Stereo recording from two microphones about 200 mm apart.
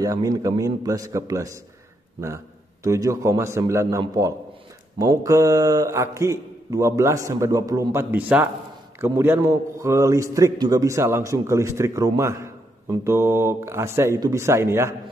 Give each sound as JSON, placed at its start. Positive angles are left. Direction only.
{"t": 0.0, "sound": "speech", "side_deg": -15}